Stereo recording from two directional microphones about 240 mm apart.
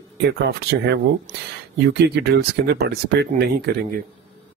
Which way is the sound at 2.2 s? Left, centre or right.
Right.